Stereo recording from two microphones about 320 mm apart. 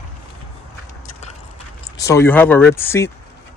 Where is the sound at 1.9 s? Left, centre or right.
Centre.